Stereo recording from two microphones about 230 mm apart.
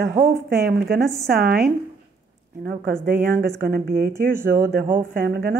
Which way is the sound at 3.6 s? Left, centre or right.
Right.